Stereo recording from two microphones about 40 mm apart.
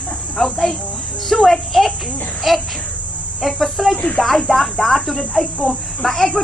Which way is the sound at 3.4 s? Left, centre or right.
Centre.